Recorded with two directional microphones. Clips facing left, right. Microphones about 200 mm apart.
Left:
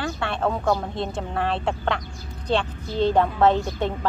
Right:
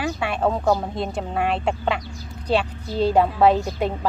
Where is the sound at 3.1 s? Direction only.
10° right (ahead or behind).